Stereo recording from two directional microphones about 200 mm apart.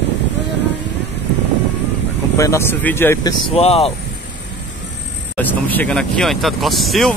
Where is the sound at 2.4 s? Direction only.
15° left (ahead or behind).